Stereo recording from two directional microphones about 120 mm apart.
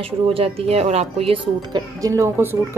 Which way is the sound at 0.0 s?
50° right (ahead or behind).